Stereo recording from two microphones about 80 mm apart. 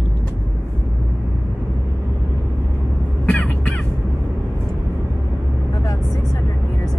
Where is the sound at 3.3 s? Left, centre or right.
Centre.